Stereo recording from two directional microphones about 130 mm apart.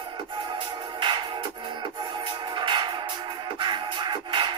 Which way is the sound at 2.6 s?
35° right (ahead or behind).